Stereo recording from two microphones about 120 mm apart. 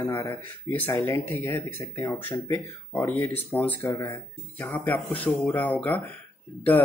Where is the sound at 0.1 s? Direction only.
25° left (ahead or behind).